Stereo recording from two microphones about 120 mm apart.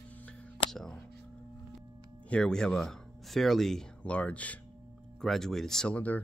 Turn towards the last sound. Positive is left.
turn(degrees=15)  # may be behind; listen again after turning